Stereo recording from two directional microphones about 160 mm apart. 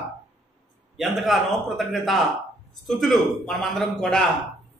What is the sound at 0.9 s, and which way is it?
A man's voice, centre (ahead or behind).